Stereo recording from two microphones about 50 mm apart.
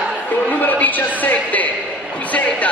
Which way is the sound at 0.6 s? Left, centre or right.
Left.